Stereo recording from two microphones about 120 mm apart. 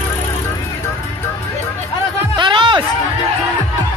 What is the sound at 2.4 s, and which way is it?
Music, 40° right (ahead or behind).